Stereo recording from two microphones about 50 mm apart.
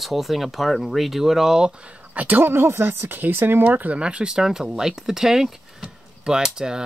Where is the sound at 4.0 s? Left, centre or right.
Centre.